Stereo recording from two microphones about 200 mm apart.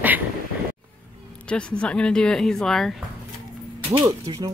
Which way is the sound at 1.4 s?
5° left (ahead or behind).